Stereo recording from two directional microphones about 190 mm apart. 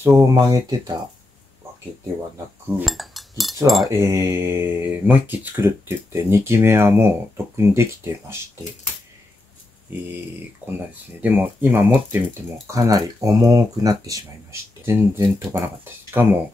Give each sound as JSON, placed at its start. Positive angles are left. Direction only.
{"t": 0.0, "sound": "speech", "side_deg": -15}
{"t": 2.8, "sound": "speech", "side_deg": 0}
{"t": 3.6, "sound": "cutlery", "side_deg": 0}
{"t": 4.0, "sound": "speech", "side_deg": -15}
{"t": 9.9, "sound": "speech", "side_deg": -10}
{"t": 11.1, "sound": "speech", "side_deg": -10}